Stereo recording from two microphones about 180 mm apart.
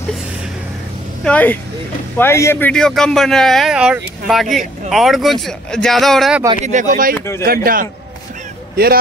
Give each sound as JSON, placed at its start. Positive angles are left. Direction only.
{"t": 1.2, "sound": "a man's voice", "side_deg": 10}
{"t": 6.6, "sound": "speech", "side_deg": -45}
{"t": 7.2, "sound": "speech", "side_deg": 15}
{"t": 7.4, "sound": "speech", "side_deg": -55}